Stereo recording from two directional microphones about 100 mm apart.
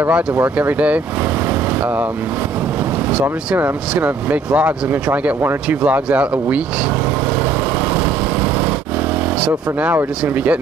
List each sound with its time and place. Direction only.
0.0 s speech: 20° right (ahead or behind)
3.1 s speech: 15° right (ahead or behind)
9.8 s speech: 20° right (ahead or behind)